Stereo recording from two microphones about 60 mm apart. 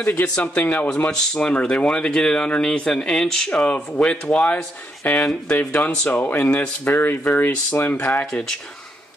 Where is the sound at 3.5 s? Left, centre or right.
Left.